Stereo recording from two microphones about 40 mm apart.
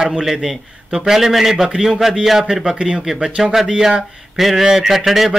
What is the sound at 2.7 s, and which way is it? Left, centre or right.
Speech, right.